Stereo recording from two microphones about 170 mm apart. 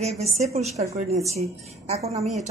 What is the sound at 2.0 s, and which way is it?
Speech, 20° right (ahead or behind).